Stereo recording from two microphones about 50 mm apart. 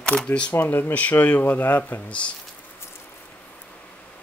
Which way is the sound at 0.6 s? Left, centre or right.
Left.